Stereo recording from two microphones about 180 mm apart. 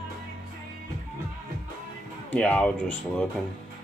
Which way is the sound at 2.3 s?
5° left (ahead or behind).